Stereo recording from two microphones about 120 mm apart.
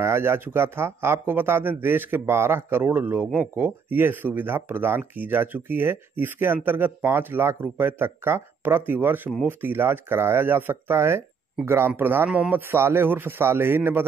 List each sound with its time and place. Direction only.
0.0 s speech: 20° right (ahead or behind)